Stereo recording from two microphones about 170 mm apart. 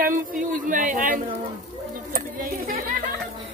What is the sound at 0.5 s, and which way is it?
A woman's voice, 50° right (ahead or behind).